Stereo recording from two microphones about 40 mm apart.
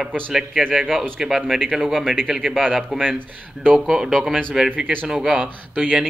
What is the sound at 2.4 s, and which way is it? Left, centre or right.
Speech, centre.